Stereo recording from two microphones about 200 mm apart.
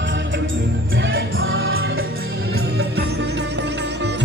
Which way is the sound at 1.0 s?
80° right.